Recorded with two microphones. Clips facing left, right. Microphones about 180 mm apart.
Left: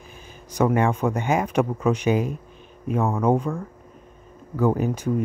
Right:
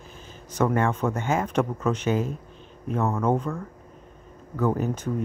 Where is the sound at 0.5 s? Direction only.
10° left (ahead or behind).